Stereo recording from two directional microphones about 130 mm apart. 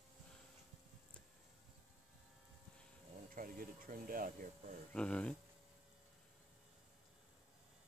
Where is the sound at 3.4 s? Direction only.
90° right.